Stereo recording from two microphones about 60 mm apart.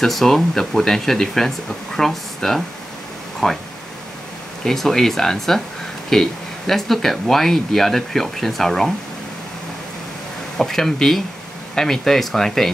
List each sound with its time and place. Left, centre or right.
0.0 s speech: centre
4.6 s speech: centre
10.6 s speech: centre